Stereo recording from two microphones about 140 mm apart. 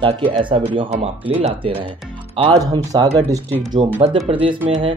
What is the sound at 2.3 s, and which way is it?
Speech, 35° right (ahead or behind).